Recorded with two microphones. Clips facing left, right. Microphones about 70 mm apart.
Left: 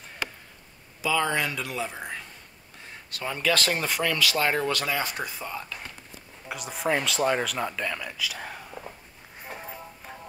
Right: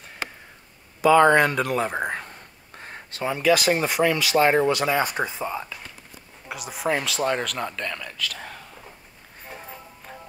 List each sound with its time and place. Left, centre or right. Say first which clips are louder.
1.0 s speech: right 10 dB; right
3.1 s speech: right 6 dB; right
3.3 s speech: right 6 dB; centre
6.5 s speech: right 1 dB; centre
9.5 s music: left 1 dB; centre